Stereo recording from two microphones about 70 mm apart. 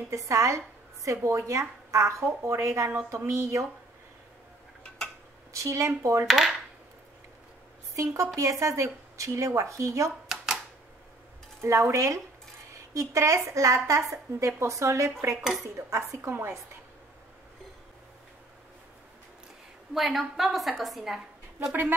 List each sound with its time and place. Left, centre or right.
0.1 s a woman's voice: right
5.5 s a woman's voice: right
6.2 s a woman's voice: centre
7.9 s a woman's voice: right
10.2 s a sound: centre
11.6 s a woman's voice: right
15.4 s a woman's voice: centre
15.7 s a woman's voice: right
19.9 s a woman's voice: centre